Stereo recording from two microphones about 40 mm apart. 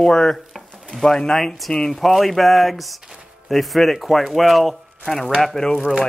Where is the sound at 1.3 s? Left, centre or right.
Centre.